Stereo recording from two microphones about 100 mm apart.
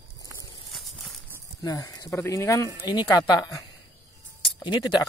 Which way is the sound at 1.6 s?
35° left (ahead or behind).